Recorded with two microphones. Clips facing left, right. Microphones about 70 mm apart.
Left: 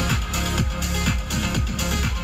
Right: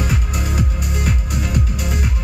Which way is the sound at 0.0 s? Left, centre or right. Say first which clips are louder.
Right 2 dB; right.